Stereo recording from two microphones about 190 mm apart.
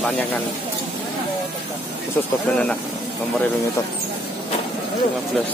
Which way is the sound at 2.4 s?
5° left (ahead or behind).